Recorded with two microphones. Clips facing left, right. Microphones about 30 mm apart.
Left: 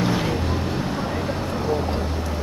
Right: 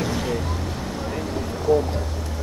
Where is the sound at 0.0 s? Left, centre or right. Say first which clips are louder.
Left 3 dB; left.